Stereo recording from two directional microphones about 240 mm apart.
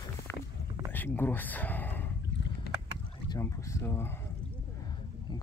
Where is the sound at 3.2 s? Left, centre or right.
Centre.